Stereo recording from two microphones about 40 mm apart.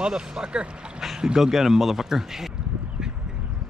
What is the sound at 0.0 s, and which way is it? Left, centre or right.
Speech, right.